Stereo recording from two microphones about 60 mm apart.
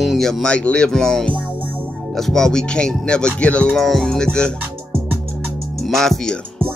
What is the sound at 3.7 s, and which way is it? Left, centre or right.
Speech, centre.